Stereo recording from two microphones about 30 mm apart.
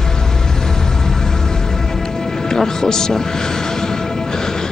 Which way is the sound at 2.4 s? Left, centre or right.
Centre.